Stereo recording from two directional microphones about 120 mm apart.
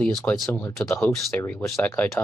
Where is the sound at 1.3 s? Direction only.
20° left (ahead or behind).